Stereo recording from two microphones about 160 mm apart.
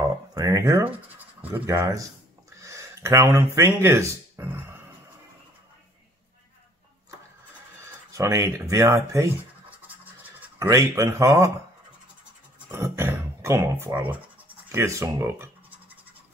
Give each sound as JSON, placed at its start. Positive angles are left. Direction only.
{"t": 0.3, "sound": "a sound", "side_deg": -20}
{"t": 1.4, "sound": "speech", "side_deg": -15}
{"t": 2.5, "sound": "a sound", "side_deg": -20}
{"t": 3.5, "sound": "speech", "side_deg": -15}
{"t": 7.8, "sound": "speech", "side_deg": -20}
{"t": 10.6, "sound": "speech", "side_deg": -20}
{"t": 12.7, "sound": "speech", "side_deg": -15}
{"t": 14.7, "sound": "scratch", "side_deg": -15}